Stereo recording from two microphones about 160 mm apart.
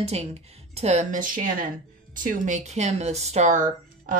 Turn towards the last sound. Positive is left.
turn(degrees=-50)  # may be behind; listen again after turning